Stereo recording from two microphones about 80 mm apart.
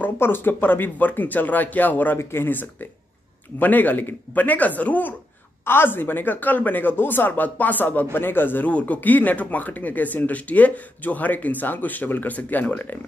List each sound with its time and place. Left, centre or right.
0.0 s speech: left